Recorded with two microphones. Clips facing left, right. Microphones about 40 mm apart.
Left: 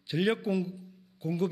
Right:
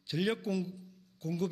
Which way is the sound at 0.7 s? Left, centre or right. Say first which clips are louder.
Left 4 dB; centre.